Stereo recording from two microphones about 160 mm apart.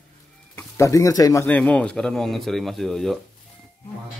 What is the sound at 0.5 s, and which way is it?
Speech, 20° left (ahead or behind).